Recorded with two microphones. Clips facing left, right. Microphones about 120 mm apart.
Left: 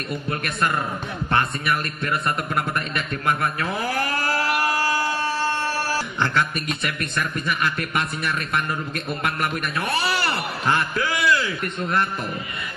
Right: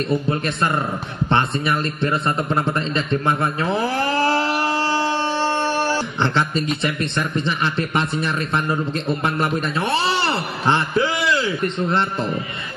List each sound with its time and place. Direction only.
0.1 s a man's voice: 25° right (ahead or behind)